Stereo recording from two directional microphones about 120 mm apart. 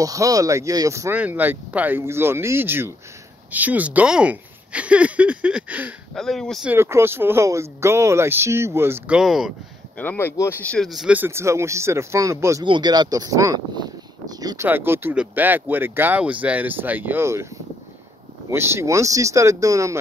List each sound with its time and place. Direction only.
0.0 s speech: 30° right (ahead or behind)
1.1 s speech: 15° right (ahead or behind)
6.1 s speech: 5° left (ahead or behind)
6.7 s speech: 20° right (ahead or behind)
9.1 s speech: 5° right (ahead or behind)
9.9 s speech: 15° left (ahead or behind)
10.6 s speech: 10° left (ahead or behind)
10.9 s speech: 5° right (ahead or behind)
11.1 s speech: 20° right (ahead or behind)
12.6 s speech: 40° right (ahead or behind)
14.6 s speech: 20° right (ahead or behind)
18.5 s speech: 20° right (ahead or behind)